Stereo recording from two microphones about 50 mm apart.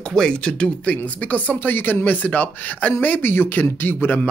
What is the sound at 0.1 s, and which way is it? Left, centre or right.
Speech, centre.